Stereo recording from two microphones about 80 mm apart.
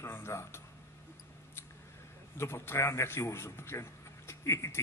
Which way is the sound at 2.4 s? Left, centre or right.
Left.